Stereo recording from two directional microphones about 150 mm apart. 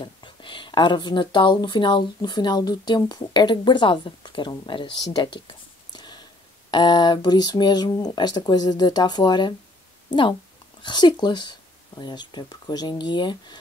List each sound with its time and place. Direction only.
0.0 s speech: 35° left (ahead or behind)
5.9 s a sound: 30° left (ahead or behind)
6.7 s speech: 30° left (ahead or behind)
10.8 s speech: 30° left (ahead or behind)